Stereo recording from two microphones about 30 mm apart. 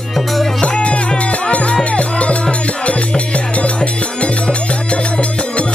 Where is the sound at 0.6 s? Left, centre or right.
Left.